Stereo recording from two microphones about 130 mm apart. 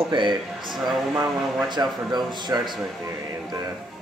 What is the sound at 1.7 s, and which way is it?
A man's voice, 35° right (ahead or behind).